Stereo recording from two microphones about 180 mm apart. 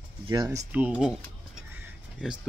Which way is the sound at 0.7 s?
10° right (ahead or behind).